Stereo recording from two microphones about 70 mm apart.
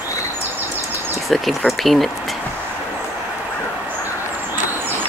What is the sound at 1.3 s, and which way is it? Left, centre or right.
Speech, centre.